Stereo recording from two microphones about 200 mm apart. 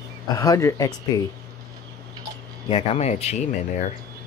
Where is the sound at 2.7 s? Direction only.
35° left (ahead or behind).